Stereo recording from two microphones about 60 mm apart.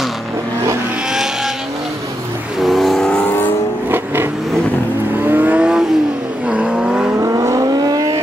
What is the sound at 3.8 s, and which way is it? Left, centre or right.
Vehicle, right.